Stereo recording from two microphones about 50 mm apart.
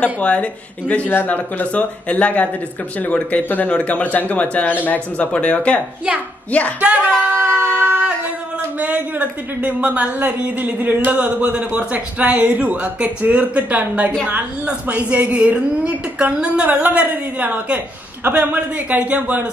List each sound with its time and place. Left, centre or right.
0.0 s speech: left
6.8 s a woman's voice: right
7.3 s a sound: right
8.7 s a woman's voice: right